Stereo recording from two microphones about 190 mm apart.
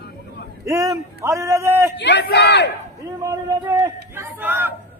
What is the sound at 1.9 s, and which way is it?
Speech, 60° left (ahead or behind).